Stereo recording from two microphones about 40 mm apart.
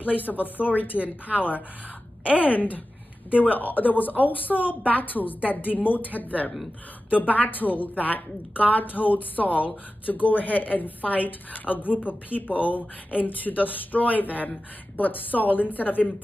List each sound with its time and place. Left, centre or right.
0.0 s a woman's voice: left